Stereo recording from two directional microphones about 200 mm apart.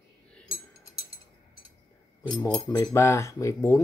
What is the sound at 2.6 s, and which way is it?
Speech, 15° left (ahead or behind).